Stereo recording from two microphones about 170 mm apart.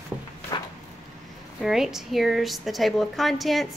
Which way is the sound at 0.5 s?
20° left (ahead or behind).